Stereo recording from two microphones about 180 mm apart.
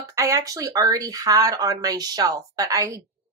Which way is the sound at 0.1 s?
15° right (ahead or behind).